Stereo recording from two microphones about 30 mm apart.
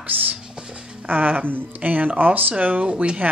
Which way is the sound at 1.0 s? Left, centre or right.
Right.